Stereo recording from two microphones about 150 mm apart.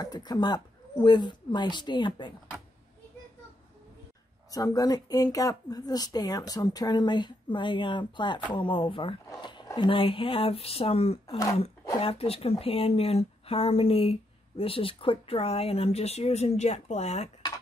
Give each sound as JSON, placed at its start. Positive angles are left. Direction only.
{"t": 0.0, "sound": "speech", "side_deg": 25}
{"t": 4.5, "sound": "a woman's voice", "side_deg": 25}